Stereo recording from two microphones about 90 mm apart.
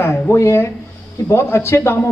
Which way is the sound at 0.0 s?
25° left (ahead or behind).